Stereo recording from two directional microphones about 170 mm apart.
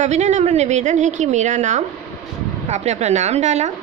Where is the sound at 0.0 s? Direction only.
45° right (ahead or behind).